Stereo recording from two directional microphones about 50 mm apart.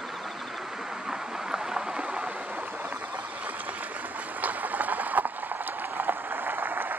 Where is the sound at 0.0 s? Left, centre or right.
Centre.